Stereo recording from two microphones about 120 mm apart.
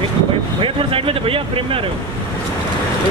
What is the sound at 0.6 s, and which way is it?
Speech, 50° right (ahead or behind).